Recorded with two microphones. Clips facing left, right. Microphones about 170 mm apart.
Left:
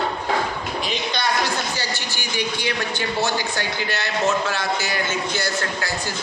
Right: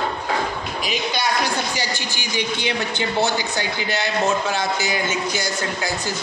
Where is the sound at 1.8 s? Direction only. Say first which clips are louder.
Right 2 dB; 15° right (ahead or behind).